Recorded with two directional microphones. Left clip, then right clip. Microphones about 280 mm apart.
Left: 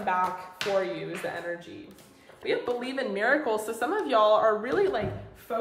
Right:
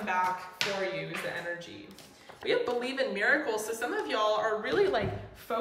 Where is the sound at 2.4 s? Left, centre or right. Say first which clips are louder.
Even; centre.